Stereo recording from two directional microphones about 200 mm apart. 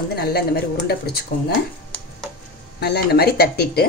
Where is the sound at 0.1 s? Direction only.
50° left (ahead or behind).